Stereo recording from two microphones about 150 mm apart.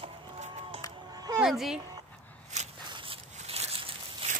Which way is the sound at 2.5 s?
50° right (ahead or behind).